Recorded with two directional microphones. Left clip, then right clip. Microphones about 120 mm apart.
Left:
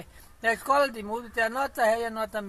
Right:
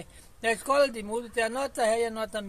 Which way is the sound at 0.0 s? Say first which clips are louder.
Left 2 dB; 15° right (ahead or behind).